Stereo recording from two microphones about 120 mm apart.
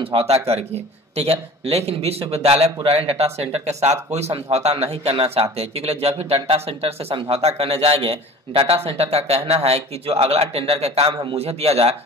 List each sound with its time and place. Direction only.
0.0 s a man's voice: 55° right (ahead or behind)